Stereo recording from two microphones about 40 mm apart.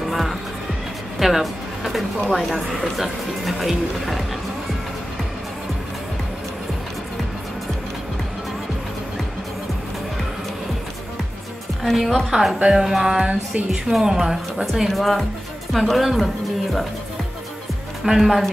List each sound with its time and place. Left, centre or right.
0.1 s music: centre
2.3 s speech: centre
11.8 s speech: centre
12.3 s music: centre
13.9 s a woman's voice: right
14.2 s speech: centre
18.0 s music: centre